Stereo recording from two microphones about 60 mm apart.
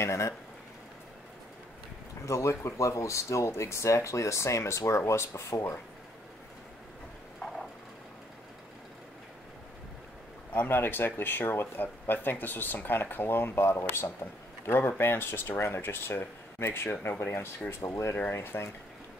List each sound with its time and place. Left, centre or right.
0.0 s speech: left
2.2 s speech: left
10.5 s speech: left